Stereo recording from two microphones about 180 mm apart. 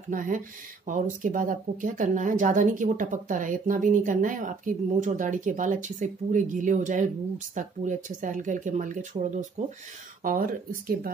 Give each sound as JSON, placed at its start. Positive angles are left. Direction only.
{"t": 0.1, "sound": "speech", "side_deg": -50}